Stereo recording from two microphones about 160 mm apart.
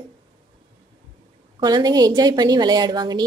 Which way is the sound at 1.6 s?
25° right (ahead or behind).